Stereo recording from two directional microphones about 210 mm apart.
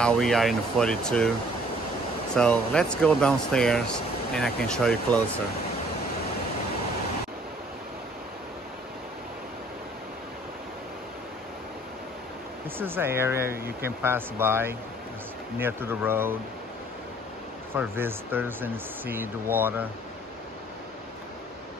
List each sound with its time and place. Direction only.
0.0 s speech: centre (ahead or behind)
2.3 s speech: 5° left (ahead or behind)
12.7 s speech: 10° right (ahead or behind)
13.5 s speech: 45° right (ahead or behind)
14.0 s speech: 10° right (ahead or behind)
17.7 s speech: 10° right (ahead or behind)